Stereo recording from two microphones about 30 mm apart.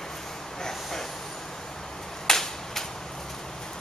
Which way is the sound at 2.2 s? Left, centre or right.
Centre.